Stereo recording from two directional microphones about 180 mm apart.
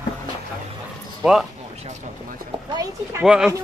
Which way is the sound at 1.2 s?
5° right (ahead or behind).